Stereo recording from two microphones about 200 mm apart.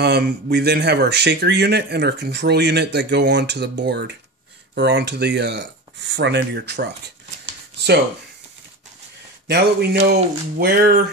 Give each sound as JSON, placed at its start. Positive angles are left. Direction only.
{"t": 0.0, "sound": "speech", "side_deg": -55}
{"t": 9.5, "sound": "speech", "side_deg": -55}